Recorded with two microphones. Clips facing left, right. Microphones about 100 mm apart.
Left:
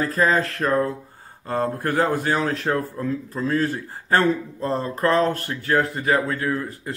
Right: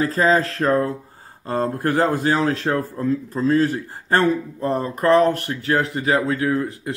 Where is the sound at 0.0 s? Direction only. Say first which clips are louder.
Right 3 dB; 25° right (ahead or behind).